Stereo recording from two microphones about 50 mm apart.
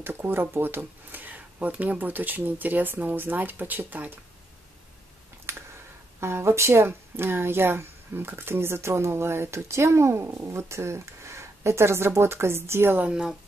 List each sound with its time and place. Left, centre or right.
0.0 s speech: right
5.5 s a sound: right
6.2 s speech: right
13.1 s speech: centre